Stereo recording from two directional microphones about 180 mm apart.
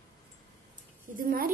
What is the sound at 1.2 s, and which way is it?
Speech, 55° right (ahead or behind).